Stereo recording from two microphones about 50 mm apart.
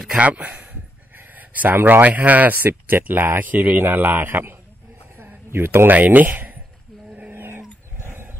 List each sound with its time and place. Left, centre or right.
0.1 s speech: right
5.1 s speech: right
7.2 s a sound: right